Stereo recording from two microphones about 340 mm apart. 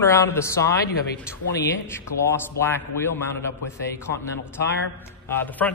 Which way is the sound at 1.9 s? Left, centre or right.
Centre.